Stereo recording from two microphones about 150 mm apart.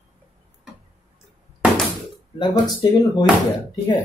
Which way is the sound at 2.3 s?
30° left (ahead or behind).